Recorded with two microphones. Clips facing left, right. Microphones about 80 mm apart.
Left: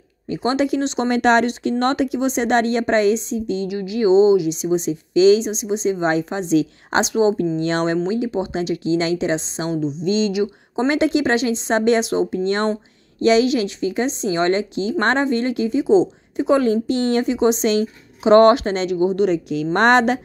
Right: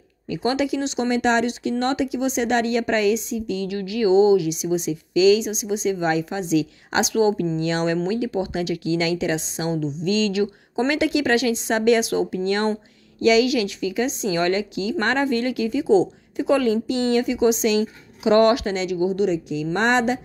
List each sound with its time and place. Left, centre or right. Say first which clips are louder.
0.3 s speech: left 3 dB; left
0.7 s speech: left 3 dB; left
9.8 s speech: left 3 dB; left
10.9 s speech: left 3 dB; left
16.6 s speech: left 2 dB; left